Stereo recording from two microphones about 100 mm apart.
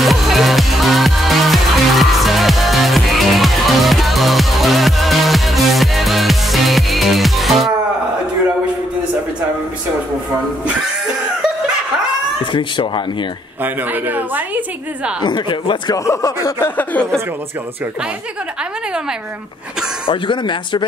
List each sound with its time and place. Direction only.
0.0 s music: centre (ahead or behind)
12.5 s speech: 55° left (ahead or behind)
13.6 s a woman's voice: 20° right (ahead or behind)
15.2 s speech: 50° left (ahead or behind)
16.1 s speech: 30° left (ahead or behind); by 17.1 s 15° left (ahead or behind)
20.1 s speech: 55° left (ahead or behind)